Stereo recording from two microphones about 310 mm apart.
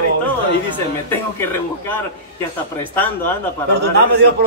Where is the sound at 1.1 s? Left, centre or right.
Centre.